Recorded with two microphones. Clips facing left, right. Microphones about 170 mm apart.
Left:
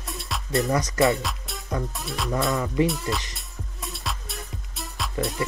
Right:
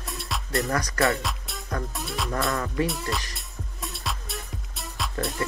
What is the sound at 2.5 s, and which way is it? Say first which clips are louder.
Speech: left 4 dB; 15° left (ahead or behind).